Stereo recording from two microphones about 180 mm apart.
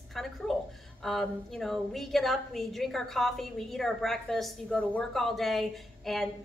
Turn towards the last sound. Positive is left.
turn(degrees=0)  # may be behind; listen again after turning